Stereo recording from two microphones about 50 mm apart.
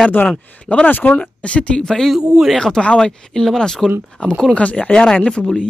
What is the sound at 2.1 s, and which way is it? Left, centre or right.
Speech, centre.